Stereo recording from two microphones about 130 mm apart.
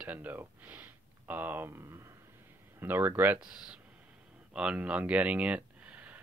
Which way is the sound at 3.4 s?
5° right (ahead or behind).